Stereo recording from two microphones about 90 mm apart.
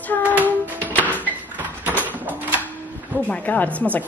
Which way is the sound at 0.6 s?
20° right (ahead or behind).